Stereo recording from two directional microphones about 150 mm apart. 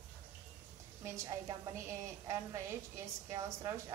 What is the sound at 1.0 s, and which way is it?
A woman's voice, 20° right (ahead or behind).